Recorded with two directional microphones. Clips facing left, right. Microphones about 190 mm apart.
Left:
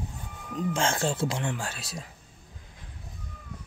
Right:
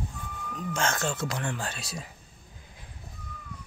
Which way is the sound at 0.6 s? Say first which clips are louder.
Left 3 dB; 30° left (ahead or behind).